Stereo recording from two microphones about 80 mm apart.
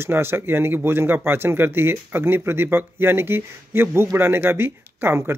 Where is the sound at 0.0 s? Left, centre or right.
Right.